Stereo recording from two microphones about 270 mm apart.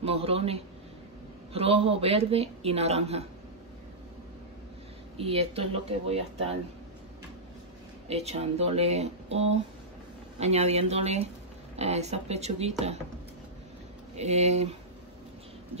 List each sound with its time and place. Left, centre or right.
0.0 s a man's voice: right
5.1 s a woman's voice: right
8.1 s a woman's voice: right
14.1 s a woman's voice: right